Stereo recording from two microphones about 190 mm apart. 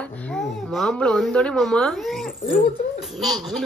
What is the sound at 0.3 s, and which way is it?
A woman's voice, centre (ahead or behind).